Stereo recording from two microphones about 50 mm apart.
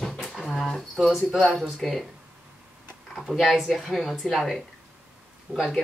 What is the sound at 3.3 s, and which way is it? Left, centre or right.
Speech, centre.